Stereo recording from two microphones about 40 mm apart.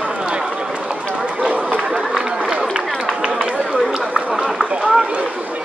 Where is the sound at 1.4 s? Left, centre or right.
Right.